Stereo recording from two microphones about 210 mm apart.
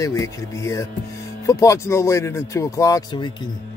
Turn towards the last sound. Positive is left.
turn(degrees=20)  # may be behind; listen again after turning